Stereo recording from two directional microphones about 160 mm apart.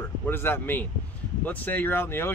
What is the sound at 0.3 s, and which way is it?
Speech, 15° left (ahead or behind).